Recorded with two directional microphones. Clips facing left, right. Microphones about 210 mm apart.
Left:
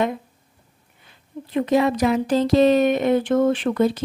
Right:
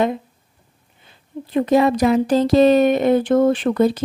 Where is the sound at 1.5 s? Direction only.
35° right (ahead or behind).